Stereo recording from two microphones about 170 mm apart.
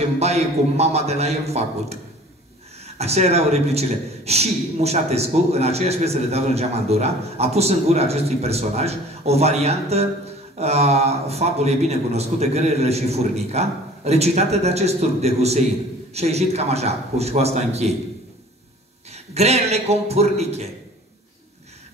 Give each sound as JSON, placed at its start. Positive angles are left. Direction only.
{"t": 0.2, "sound": "a man's voice", "side_deg": -40}
{"t": 19.0, "sound": "a man's voice", "side_deg": -40}